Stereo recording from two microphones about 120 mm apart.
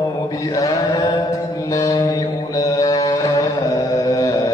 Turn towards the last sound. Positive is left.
turn(degrees=30)  # may be behind; listen again after turning